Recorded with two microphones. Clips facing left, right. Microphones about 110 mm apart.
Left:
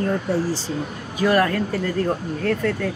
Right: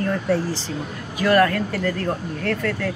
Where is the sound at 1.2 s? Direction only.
20° left (ahead or behind).